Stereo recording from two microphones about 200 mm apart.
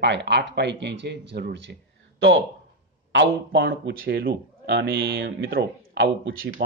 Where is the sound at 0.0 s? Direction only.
60° right (ahead or behind).